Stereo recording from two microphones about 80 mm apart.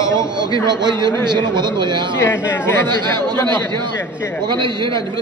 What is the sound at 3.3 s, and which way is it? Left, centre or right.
Speech, left.